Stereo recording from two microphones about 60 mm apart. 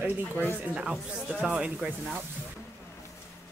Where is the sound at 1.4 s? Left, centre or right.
Centre.